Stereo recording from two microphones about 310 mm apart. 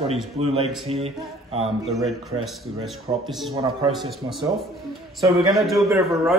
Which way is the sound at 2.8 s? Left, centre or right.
Centre.